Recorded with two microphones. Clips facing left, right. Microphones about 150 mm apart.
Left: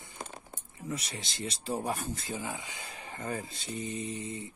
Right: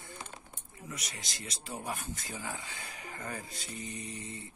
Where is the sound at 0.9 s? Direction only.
30° left (ahead or behind).